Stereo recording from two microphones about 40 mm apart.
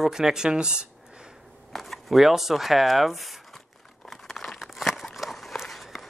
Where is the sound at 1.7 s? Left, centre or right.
Centre.